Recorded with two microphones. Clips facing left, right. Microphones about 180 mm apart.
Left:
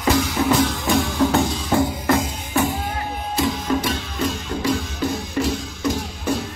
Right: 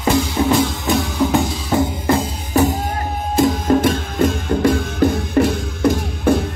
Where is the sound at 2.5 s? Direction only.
40° right (ahead or behind).